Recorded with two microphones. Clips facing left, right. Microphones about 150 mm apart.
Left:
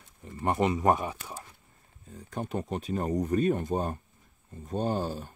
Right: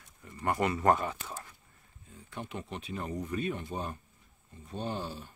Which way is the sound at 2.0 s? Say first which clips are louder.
Left 6 dB; 40° left (ahead or behind).